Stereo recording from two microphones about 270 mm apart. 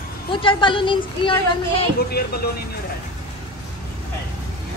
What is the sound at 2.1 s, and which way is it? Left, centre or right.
Speech, left.